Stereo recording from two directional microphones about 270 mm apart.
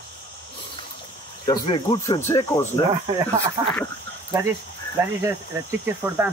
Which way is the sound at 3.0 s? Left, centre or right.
Centre.